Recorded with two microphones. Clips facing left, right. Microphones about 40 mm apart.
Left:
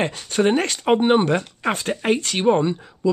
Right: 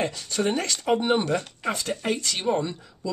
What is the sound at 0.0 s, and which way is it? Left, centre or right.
Speech, left.